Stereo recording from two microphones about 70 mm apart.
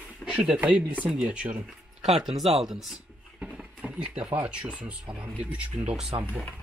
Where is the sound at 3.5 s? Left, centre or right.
Centre.